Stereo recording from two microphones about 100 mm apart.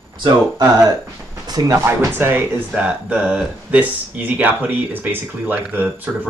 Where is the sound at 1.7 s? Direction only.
25° right (ahead or behind).